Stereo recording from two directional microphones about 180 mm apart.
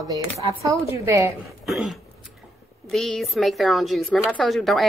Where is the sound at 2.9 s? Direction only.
Centre (ahead or behind).